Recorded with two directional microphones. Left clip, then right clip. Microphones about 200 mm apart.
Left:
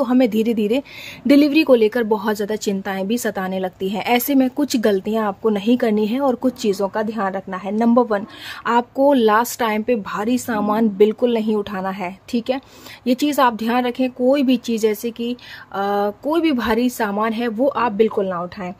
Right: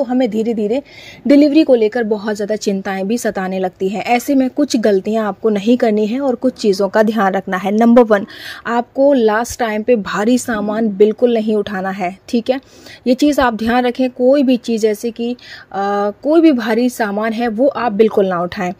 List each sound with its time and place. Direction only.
0.0 s a woman's voice: 5° left (ahead or behind); by 6.9 s 10° right (ahead or behind)
6.9 s speech: 25° right (ahead or behind)
8.6 s a woman's voice: 5° right (ahead or behind)
10.0 s a woman's voice: 20° right (ahead or behind)